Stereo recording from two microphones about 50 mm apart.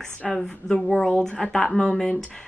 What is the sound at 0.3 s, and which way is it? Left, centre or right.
A woman's voice, centre.